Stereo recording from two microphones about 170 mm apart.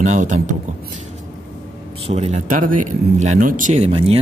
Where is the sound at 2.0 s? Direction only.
40° right (ahead or behind).